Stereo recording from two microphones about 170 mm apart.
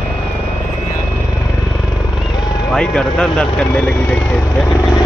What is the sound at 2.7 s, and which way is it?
Speech, 5° left (ahead or behind).